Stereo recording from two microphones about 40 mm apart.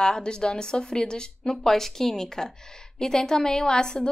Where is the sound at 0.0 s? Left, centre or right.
Left.